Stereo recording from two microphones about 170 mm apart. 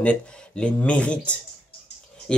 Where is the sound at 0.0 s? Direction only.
5° left (ahead or behind).